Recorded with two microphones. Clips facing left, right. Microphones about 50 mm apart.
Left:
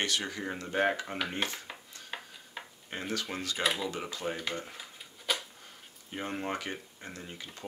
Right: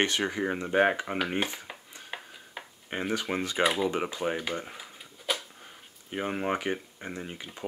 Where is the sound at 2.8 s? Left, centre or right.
Right.